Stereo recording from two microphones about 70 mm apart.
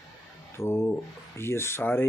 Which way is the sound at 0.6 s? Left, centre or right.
Left.